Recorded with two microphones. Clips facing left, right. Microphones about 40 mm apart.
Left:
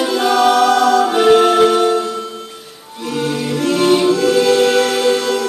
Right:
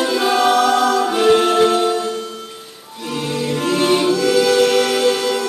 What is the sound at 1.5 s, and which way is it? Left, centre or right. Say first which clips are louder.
Music: left 2 dB; centre.